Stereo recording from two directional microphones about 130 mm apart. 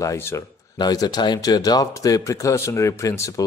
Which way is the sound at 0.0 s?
20° left (ahead or behind).